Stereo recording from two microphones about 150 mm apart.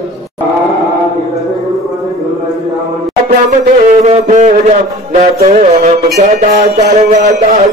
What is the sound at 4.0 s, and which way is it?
Music, 50° right (ahead or behind).